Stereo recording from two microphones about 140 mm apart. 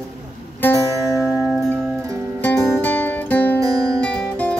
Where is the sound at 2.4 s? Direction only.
15° left (ahead or behind).